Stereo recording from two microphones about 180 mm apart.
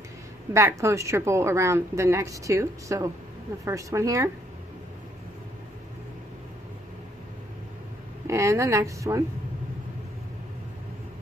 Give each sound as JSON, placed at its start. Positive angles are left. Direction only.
{"t": 0.5, "sound": "speech", "side_deg": -15}
{"t": 8.3, "sound": "speech", "side_deg": -15}